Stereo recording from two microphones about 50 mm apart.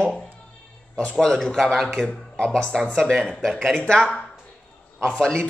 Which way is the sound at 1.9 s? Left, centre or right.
Centre.